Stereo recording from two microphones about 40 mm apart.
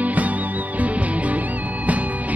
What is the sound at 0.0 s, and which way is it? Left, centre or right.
Music, right.